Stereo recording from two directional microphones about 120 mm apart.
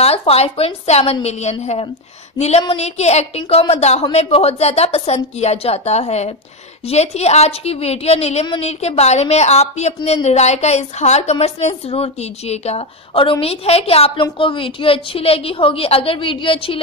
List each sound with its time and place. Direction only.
0.0 s a woman's voice: 55° left (ahead or behind)
2.3 s a sound: 65° left (ahead or behind)
2.7 s a woman's voice: 65° left (ahead or behind); by 16.8 s 50° left (ahead or behind)